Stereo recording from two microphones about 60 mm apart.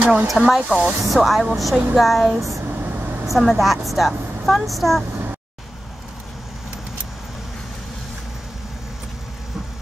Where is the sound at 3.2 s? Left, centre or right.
Centre.